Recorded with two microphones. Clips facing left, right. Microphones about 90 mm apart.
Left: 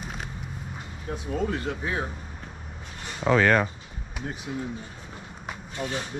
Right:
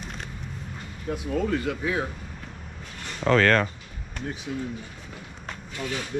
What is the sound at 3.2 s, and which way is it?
Speech, 10° left (ahead or behind).